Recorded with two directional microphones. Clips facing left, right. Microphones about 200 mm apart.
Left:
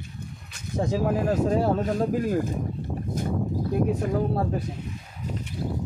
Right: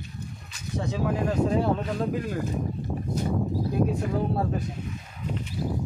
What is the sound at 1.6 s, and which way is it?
Speech, 40° left (ahead or behind).